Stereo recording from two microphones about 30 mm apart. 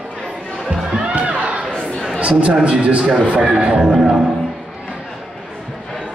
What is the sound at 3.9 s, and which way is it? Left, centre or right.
Speech, right.